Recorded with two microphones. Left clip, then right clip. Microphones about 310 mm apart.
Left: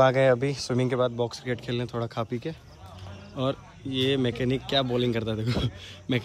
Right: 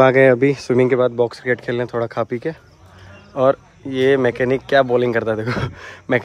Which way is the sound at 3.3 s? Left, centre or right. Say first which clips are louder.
Right 14 dB; centre.